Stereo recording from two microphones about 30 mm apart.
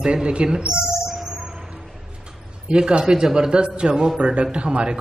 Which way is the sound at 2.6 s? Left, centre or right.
Right.